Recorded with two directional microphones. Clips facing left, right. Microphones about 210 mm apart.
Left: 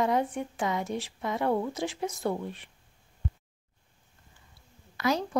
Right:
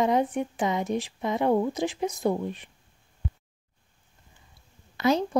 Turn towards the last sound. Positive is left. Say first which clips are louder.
# right 5 dB
turn(degrees=-25)  # may be behind; listen again after turning